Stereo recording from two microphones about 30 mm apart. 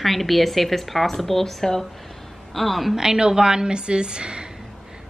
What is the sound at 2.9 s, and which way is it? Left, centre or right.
A woman's voice, right.